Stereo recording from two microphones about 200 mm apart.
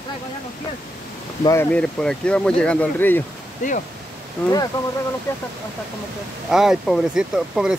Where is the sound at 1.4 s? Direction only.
10° left (ahead or behind).